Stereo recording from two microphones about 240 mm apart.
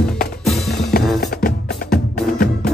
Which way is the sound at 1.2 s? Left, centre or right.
Left.